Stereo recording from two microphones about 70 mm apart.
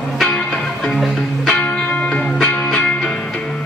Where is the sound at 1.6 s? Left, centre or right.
Centre.